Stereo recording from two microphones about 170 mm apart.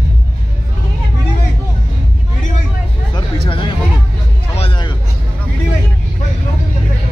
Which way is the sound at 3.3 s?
30° left (ahead or behind).